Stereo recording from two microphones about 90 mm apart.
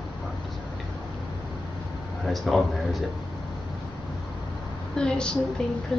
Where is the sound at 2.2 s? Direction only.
Centre (ahead or behind).